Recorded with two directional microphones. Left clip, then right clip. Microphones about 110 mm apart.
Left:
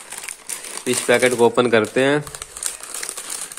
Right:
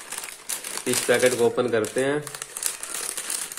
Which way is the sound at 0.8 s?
35° left (ahead or behind).